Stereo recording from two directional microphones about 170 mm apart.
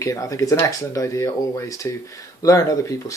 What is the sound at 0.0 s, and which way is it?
Speech, 20° left (ahead or behind).